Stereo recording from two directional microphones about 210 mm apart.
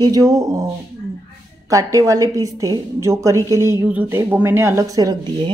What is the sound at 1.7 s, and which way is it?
A woman's voice, 15° right (ahead or behind).